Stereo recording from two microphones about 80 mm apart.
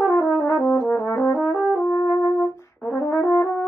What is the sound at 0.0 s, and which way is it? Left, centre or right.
Brass instrument, left.